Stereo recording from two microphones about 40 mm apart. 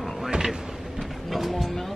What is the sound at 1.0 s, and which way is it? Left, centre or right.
Vehicle, centre.